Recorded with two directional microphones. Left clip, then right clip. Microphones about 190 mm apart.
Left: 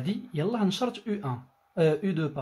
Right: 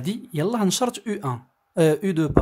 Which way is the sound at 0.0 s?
40° right (ahead or behind).